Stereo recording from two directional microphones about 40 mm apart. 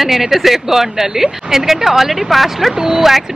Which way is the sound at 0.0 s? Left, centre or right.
Centre.